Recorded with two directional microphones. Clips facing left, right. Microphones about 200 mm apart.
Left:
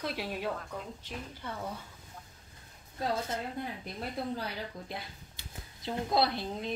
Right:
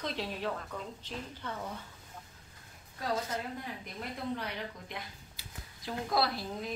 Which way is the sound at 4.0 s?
35° left (ahead or behind).